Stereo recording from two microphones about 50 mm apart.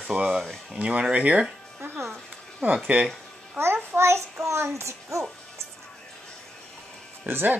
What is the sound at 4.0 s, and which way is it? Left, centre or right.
Child singing, right.